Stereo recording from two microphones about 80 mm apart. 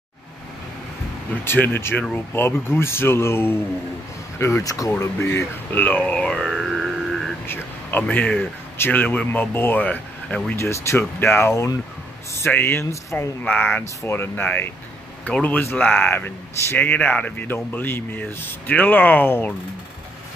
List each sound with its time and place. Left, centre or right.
1.4 s speech: left
4.6 s speech: left
5.0 s speech: left
5.7 s speech: left
6.1 s a sound: centre
7.4 s a sound: left
8.0 s speech: centre
10.6 s speech: left
13.4 s speech: centre